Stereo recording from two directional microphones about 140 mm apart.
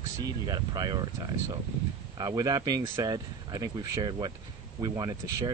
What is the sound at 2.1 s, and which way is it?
Speech, 30° right (ahead or behind).